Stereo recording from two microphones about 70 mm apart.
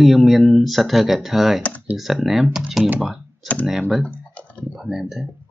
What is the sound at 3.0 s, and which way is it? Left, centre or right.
Computer keyboard, centre.